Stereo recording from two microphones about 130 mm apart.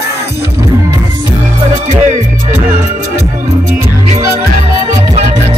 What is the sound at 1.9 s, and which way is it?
Music, 65° right (ahead or behind).